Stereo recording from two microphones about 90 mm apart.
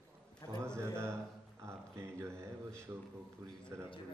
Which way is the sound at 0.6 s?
30° right (ahead or behind).